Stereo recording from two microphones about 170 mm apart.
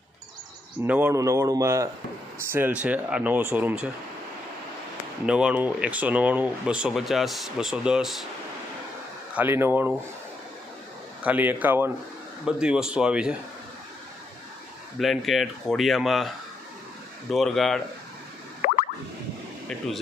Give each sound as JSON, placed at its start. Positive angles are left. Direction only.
{"t": 0.8, "sound": "speech", "side_deg": -10}
{"t": 5.2, "sound": "speech", "side_deg": -5}
{"t": 9.3, "sound": "speech", "side_deg": -10}
{"t": 11.2, "sound": "speech", "side_deg": -10}
{"t": 15.0, "sound": "speech", "side_deg": 0}
{"t": 17.3, "sound": "speech", "side_deg": 0}